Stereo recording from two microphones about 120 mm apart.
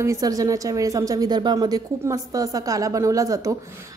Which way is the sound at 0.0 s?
30° right (ahead or behind).